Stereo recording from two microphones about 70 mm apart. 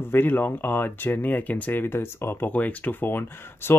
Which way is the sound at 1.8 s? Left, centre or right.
Left.